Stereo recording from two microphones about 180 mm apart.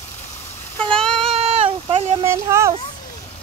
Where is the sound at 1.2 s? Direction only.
35° right (ahead or behind).